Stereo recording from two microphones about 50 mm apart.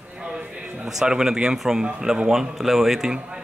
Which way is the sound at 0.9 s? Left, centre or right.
Centre.